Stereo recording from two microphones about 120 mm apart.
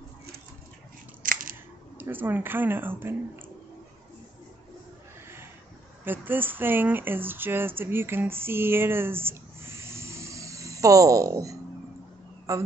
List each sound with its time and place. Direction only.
2.0 s speech: 15° right (ahead or behind)
6.0 s a man's voice: 15° right (ahead or behind)